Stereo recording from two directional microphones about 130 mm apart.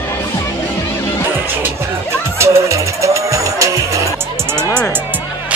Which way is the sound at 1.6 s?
20° right (ahead or behind).